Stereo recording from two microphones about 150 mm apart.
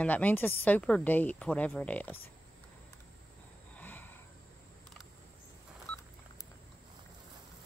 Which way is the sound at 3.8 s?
10° left (ahead or behind).